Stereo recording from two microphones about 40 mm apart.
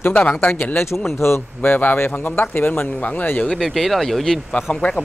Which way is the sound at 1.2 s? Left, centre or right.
Left.